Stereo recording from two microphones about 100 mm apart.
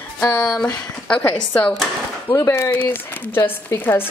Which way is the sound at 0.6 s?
10° left (ahead or behind).